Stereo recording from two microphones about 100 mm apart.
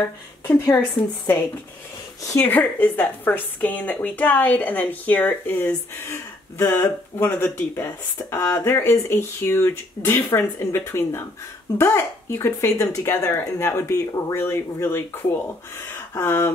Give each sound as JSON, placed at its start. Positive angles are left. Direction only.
{"t": 0.5, "sound": "speech", "side_deg": 25}
{"t": 2.3, "sound": "a woman's voice", "side_deg": 20}
{"t": 16.2, "sound": "speech", "side_deg": 25}